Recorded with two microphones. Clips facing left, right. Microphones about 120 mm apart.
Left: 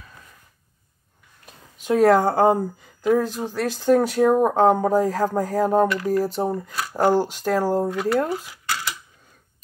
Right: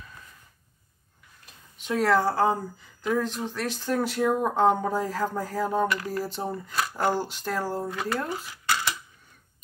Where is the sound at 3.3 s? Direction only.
40° left (ahead or behind).